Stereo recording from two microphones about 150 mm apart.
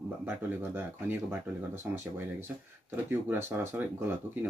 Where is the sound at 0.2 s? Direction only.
15° right (ahead or behind).